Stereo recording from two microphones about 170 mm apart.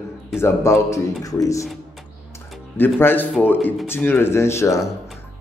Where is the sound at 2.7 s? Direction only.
10° left (ahead or behind).